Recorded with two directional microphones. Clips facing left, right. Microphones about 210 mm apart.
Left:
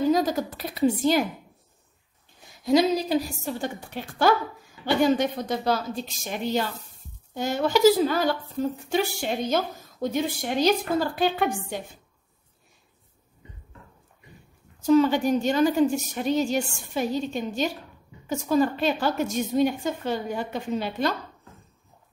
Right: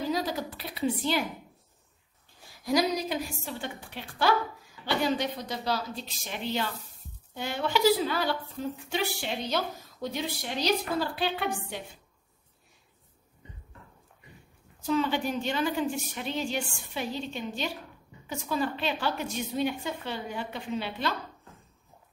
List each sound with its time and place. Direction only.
0.1 s a woman's voice: 45° left (ahead or behind)
2.4 s a woman's voice: 25° left (ahead or behind); by 11.8 s 45° left (ahead or behind)
14.8 s a woman's voice: 45° left (ahead or behind)